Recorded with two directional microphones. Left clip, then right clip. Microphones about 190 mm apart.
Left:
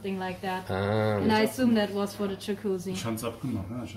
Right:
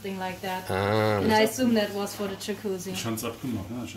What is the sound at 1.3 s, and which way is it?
Speech, 35° left (ahead or behind).